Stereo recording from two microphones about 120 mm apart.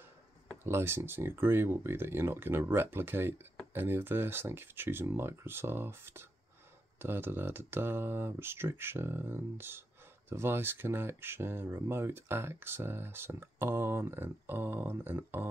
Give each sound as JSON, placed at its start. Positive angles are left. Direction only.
{"t": 0.7, "sound": "speech", "side_deg": -20}